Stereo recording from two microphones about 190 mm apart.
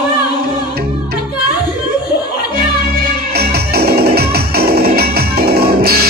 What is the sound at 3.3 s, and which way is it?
Music, 55° right (ahead or behind).